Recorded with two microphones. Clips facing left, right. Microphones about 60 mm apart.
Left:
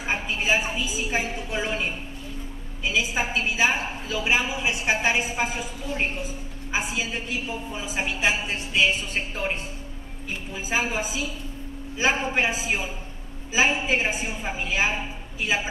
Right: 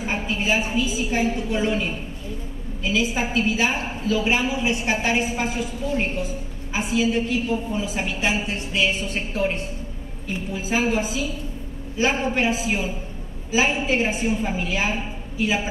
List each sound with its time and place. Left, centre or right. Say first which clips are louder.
0.0 s a woman's voice: right 2 dB; centre
2.8 s a woman's voice: right 2 dB; centre
6.7 s a woman's voice: right 6 dB; centre
10.5 s a woman's voice: right 4 dB; centre